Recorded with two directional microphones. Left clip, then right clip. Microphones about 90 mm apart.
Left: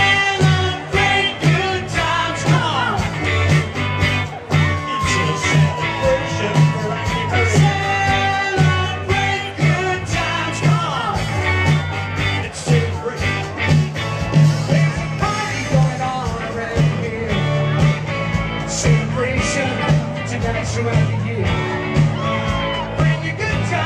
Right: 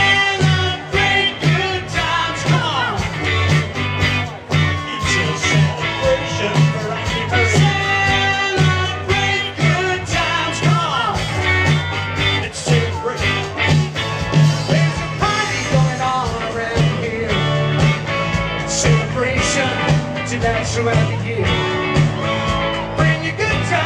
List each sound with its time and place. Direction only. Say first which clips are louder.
0.0 s music: right 1 dB; 5° left (ahead or behind); by 23.8 s 30° right (ahead or behind)